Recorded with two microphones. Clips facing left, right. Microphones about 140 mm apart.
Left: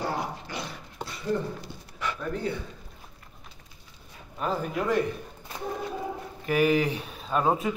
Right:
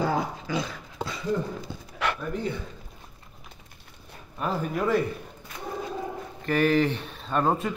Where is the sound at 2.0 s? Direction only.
80° right.